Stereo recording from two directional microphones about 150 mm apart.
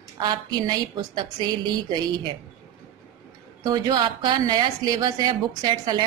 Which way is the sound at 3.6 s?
25° right (ahead or behind).